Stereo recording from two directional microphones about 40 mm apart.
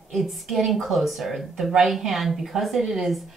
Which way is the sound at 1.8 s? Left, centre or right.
Centre.